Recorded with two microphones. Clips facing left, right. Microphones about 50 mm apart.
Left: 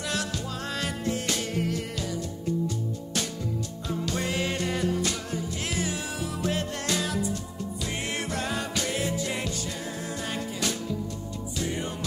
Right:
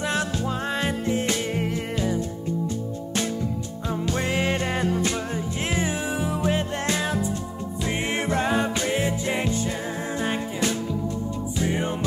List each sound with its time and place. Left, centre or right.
0.0 s music: right
4.1 s music: right